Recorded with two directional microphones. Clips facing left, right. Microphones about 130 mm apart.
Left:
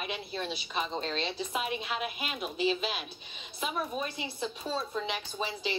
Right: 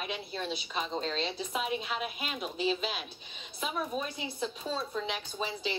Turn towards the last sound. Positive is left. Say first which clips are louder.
# left 1 dB
turn(degrees=0)  # may be behind; listen again after turning